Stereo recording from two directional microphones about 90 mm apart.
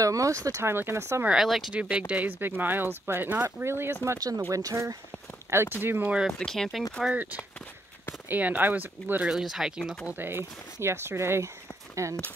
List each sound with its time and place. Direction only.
0.0 s speech: 35° right (ahead or behind)
1.2 s speech: 5° right (ahead or behind); by 4.2 s 30° right (ahead or behind)
4.4 s speech: 40° right (ahead or behind)
5.8 s speech: 20° right (ahead or behind)
6.4 s speech: 5° left (ahead or behind)
7.0 s speech: 10° right (ahead or behind)
8.3 s speech: 20° right (ahead or behind)
9.2 s speech: 5° right (ahead or behind)
10.1 s speech: 25° right (ahead or behind)